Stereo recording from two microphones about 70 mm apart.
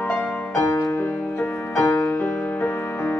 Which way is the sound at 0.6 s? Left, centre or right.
Left.